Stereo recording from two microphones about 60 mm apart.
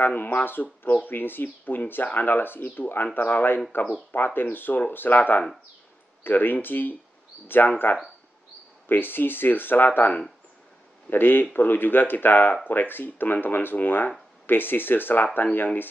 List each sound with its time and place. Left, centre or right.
0.0 s speech: left
8.8 s speech: left